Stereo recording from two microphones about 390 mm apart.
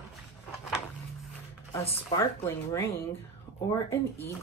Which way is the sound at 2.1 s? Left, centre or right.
Centre.